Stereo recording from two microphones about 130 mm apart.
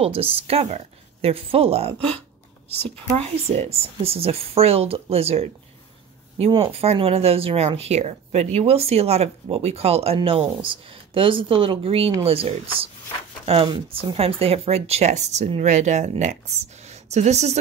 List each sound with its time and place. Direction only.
0.0 s speech: 45° right (ahead or behind)
3.4 s speech: 50° right (ahead or behind)